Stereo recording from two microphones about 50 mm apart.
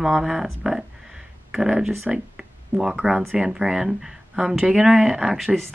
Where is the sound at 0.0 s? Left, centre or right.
Centre.